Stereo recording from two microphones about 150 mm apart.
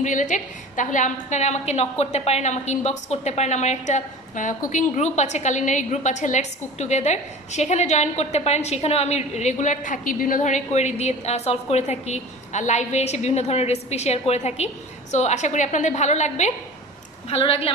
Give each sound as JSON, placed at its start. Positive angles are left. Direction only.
{"t": 0.0, "sound": "a woman's voice", "side_deg": 55}
{"t": 17.3, "sound": "a woman's voice", "side_deg": 40}